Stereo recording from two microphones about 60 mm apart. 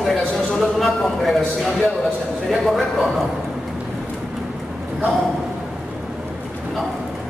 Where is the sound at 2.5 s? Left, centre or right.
Centre.